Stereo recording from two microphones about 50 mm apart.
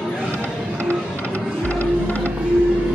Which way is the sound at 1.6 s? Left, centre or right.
Left.